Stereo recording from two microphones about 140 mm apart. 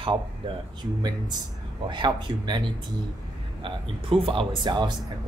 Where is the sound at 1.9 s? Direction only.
35° right (ahead or behind).